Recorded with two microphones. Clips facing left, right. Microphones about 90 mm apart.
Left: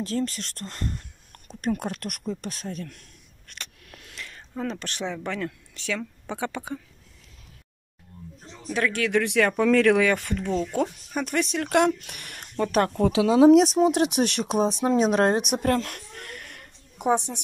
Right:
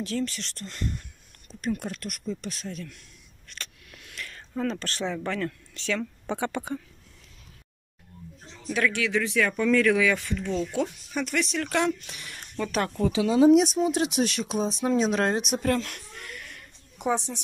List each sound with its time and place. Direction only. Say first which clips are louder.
0.0 s speech: left 2 dB; 40° left (ahead or behind)
1.5 s speech: left 3 dB; 55° left (ahead or behind)
4.1 s a sound: right 2 dB; 20° left (ahead or behind)
5.2 s speech: right 1 dB; 10° left (ahead or behind)
8.9 s speech: left 3 dB; 55° left (ahead or behind)
9.6 s speech: left 3 dB; 85° left; by 12.4 s 55° left (ahead or behind)
12.5 s speech: left 5 dB; 45° left (ahead or behind)
13.0 s speech: left 3 dB; 80° left
13.9 s speech: left 3 dB; 55° left (ahead or behind)
14.9 s speech: left 2 dB; 40° left (ahead or behind)
15.5 s a sound: left 2 dB; 40° left (ahead or behind)